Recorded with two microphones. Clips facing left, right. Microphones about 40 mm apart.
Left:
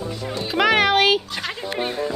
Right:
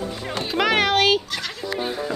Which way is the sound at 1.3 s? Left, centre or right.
Left.